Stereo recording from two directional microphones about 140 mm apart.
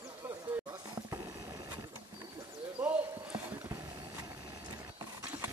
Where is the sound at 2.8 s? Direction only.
15° right (ahead or behind).